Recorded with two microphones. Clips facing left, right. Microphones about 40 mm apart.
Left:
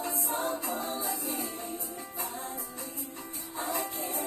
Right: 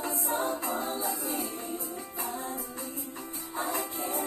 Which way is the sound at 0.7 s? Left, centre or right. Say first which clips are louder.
Right 2 dB; right.